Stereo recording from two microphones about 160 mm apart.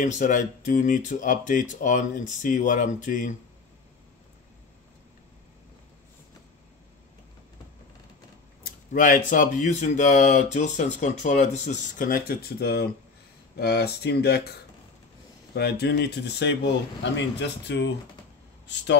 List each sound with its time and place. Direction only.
0.0 s speech: 50° left (ahead or behind)
8.9 s speech: 55° left (ahead or behind); by 12.8 s 80° left
13.6 s speech: 90° left
15.5 s speech: 90° left